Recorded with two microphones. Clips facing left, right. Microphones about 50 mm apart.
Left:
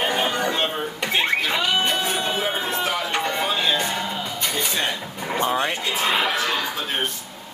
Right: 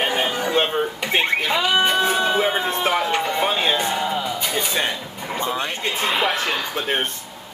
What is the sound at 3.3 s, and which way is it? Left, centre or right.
Music, right.